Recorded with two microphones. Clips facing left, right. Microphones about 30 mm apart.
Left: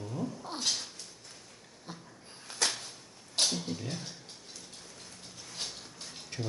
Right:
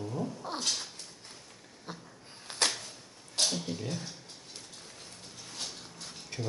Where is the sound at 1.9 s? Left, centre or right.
Centre.